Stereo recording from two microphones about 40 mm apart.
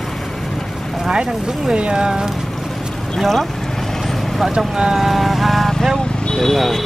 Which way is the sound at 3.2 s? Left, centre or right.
Centre.